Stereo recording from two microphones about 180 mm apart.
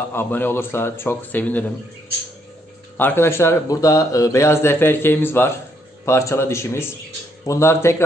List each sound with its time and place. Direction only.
0.1 s a man's voice: 10° left (ahead or behind)
3.0 s a man's voice: 10° left (ahead or behind)